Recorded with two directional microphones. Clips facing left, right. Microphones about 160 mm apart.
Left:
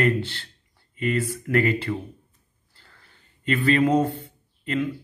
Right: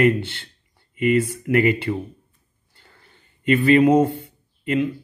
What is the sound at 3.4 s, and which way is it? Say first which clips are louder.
Speech: right 6 dB; 15° right (ahead or behind).